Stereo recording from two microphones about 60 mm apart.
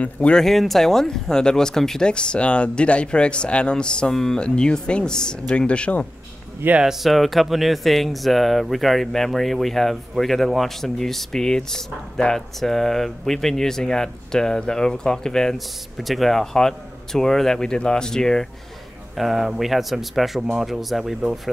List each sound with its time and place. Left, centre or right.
0.0 s speech: left
0.4 s speech: centre; by 6.0 s left
6.8 s speech: centre
15.5 s speech: centre
19.1 s speech: centre